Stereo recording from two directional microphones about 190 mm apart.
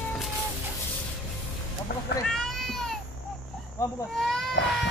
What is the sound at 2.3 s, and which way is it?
Cat, centre (ahead or behind).